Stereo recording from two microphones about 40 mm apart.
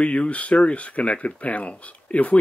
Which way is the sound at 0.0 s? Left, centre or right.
Left.